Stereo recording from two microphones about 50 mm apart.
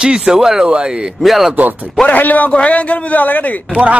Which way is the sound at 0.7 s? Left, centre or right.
Right.